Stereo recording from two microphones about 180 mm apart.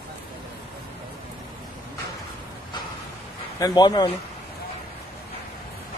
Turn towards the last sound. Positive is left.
turn(degrees=25)  # may be behind; listen again after turning